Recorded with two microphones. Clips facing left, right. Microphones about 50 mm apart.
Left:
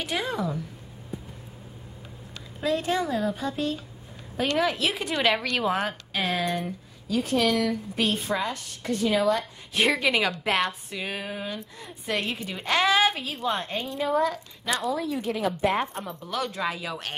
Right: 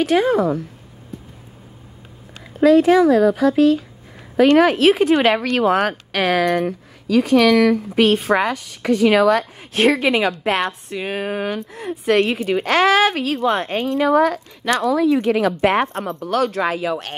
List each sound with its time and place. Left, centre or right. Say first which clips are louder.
0.3 s a woman's voice: right 12 dB; right
1.1 s a sound: right 2 dB; centre
2.6 s a woman's voice: right 14 dB; right
4.6 s a woman's voice: right 9 dB; right
5.1 s speech: right 9 dB; right
5.8 s a woman's voice: right 9 dB; right
7.2 s a woman's voice: right 10 dB; right
9.9 s a woman's voice: right 6 dB; centre
11.1 s speech: right 10 dB; right
11.7 s a woman's voice: right 15 dB; right